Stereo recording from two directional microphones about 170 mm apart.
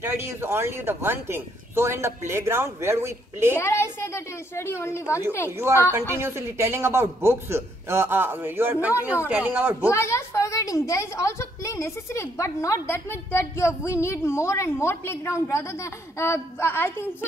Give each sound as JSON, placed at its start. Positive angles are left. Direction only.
{"t": 0.0, "sound": "speech", "side_deg": -15}
{"t": 3.5, "sound": "a woman's voice", "side_deg": 15}
{"t": 5.9, "sound": "speech", "side_deg": -15}
{"t": 9.8, "sound": "a woman's voice", "side_deg": 15}